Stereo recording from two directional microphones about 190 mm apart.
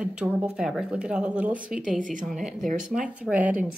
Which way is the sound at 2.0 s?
40° right (ahead or behind).